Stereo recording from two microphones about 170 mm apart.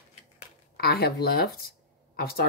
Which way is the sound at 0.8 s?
65° left (ahead or behind).